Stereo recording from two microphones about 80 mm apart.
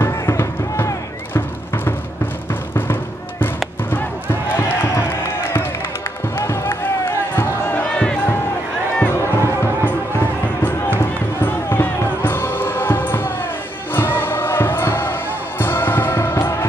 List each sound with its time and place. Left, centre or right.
0.0 s music: left
2.7 s music: left
4.6 s a sound: left
6.3 s a sound: left
7.7 s crowd: centre
9.0 s music: left